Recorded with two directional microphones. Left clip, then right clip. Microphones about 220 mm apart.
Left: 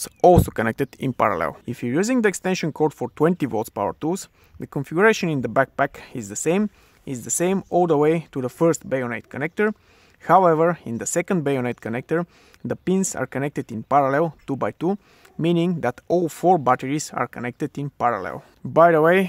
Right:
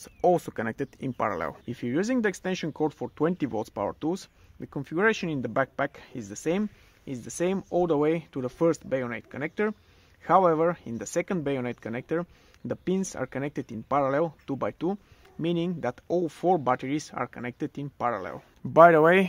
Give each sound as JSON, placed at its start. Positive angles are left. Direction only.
{"t": 0.0, "sound": "speech", "side_deg": 45}
{"t": 18.7, "sound": "speech", "side_deg": 15}